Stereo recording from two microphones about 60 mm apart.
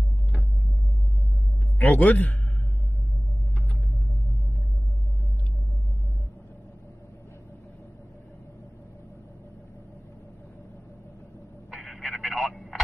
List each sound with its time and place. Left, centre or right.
1.8 s a man's voice: left
11.7 s telephone: centre